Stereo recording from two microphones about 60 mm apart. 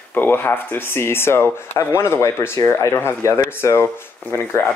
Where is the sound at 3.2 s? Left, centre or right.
Left.